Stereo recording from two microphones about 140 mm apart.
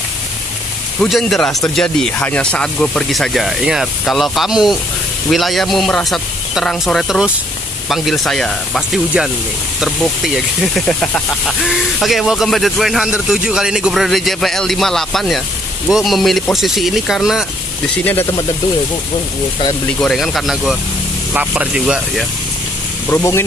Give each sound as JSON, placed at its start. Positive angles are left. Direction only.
{"t": 1.0, "sound": "speech", "side_deg": 0}
{"t": 18.0, "sound": "speech", "side_deg": 15}
{"t": 20.0, "sound": "speech", "side_deg": 0}
{"t": 23.0, "sound": "speech", "side_deg": 20}